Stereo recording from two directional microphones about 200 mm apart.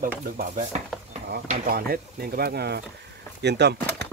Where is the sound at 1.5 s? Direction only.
50° right (ahead or behind).